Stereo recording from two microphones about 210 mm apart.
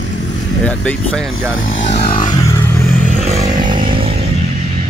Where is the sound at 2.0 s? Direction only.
25° left (ahead or behind).